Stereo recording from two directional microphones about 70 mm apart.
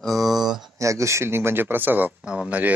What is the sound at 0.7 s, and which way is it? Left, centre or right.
Speech, right.